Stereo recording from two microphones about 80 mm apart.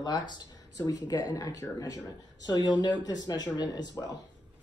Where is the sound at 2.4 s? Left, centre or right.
Left.